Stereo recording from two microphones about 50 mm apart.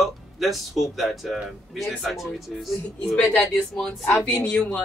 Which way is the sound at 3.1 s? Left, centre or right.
Centre.